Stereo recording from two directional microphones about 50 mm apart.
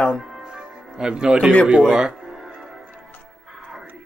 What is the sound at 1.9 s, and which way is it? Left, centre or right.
Music, centre.